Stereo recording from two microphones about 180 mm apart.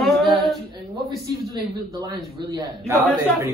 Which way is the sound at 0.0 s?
Centre (ahead or behind).